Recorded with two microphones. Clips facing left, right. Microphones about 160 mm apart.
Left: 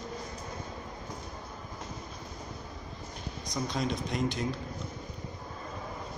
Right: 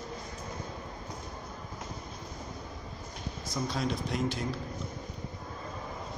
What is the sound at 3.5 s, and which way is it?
Speech, centre (ahead or behind).